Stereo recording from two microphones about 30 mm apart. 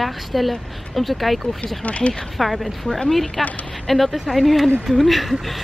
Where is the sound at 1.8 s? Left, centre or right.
Left.